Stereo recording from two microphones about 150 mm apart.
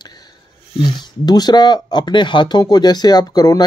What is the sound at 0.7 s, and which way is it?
Speech, 30° left (ahead or behind).